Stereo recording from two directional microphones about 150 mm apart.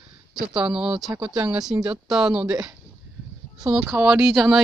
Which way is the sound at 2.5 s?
20° right (ahead or behind).